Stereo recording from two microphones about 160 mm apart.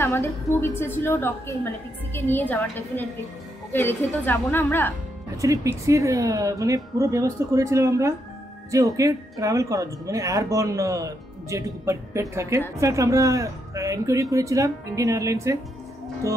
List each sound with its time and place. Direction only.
0.0 s a woman's voice: 15° left (ahead or behind)
3.7 s a woman's voice: 10° left (ahead or behind)
5.4 s speech: 20° right (ahead or behind)